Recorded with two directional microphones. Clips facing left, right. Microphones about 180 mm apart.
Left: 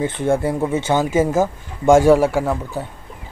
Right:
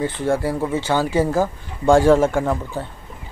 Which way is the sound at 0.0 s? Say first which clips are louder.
Left 2 dB; 20° left (ahead or behind).